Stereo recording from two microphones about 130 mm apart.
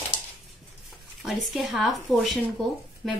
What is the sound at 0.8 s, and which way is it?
A woman's voice, centre (ahead or behind).